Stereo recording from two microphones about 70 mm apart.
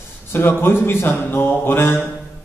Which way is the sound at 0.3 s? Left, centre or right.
Left.